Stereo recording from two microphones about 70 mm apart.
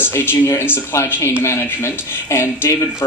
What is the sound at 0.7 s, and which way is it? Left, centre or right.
Speech, left.